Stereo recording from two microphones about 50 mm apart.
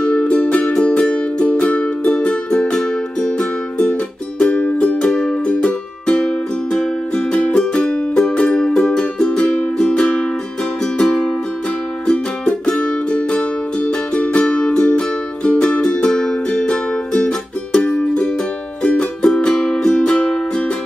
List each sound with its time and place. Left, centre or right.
0.0 s music: left